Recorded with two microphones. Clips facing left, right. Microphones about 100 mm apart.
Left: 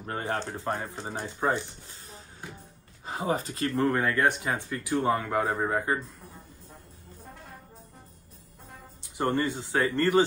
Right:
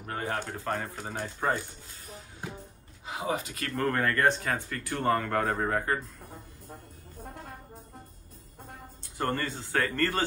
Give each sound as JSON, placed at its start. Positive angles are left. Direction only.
{"t": 0.0, "sound": "speech", "side_deg": 25}
{"t": 3.1, "sound": "speech", "side_deg": 40}
{"t": 3.6, "sound": "speech", "side_deg": 15}
{"t": 9.0, "sound": "speech", "side_deg": 15}